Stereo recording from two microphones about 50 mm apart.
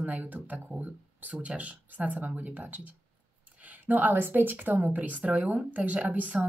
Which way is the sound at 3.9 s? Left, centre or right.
Right.